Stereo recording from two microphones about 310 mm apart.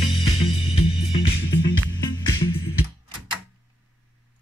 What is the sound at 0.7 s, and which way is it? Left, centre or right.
Music, centre.